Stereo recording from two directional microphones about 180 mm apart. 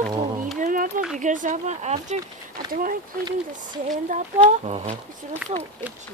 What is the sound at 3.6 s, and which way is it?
A woman's voice, 45° right (ahead or behind).